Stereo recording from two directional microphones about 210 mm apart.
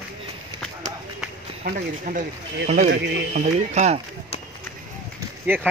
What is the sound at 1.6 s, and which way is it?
Speech, 40° right (ahead or behind).